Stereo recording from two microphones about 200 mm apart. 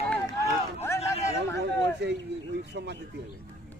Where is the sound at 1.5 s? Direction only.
60° right (ahead or behind).